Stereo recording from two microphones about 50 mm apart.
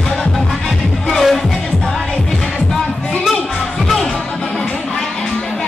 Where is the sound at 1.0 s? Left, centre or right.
Centre.